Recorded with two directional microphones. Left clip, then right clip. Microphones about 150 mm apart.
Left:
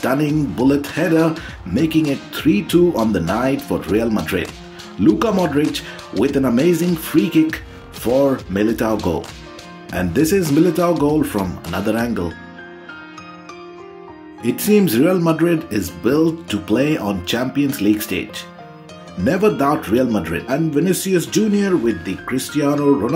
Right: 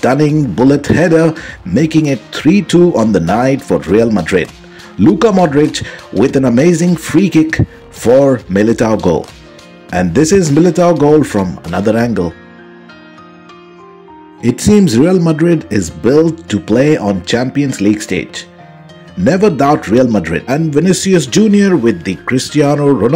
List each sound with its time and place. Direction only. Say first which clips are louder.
0.0 s speech: right 7 dB; 50° right (ahead or behind)
14.4 s speech: right 5 dB; 50° right (ahead or behind)